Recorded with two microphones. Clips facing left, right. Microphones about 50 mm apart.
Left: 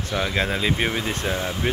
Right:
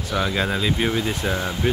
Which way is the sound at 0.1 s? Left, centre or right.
Centre.